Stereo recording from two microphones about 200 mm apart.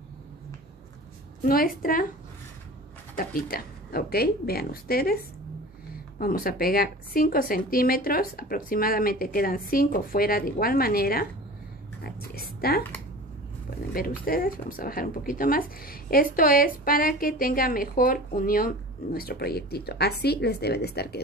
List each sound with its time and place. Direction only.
1.4 s speech: 45° left (ahead or behind)
3.2 s speech: 45° left (ahead or behind)
13.9 s speech: 45° left (ahead or behind)